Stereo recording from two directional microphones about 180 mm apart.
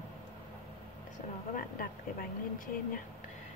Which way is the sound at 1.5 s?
50° left (ahead or behind).